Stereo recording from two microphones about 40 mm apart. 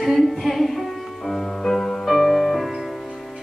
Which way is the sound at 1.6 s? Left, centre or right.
Centre.